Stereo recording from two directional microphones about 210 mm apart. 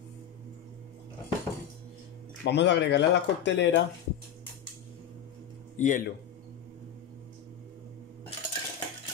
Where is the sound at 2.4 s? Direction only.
55° left (ahead or behind).